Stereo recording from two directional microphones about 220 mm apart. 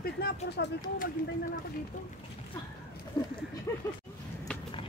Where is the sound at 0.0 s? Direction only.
45° left (ahead or behind).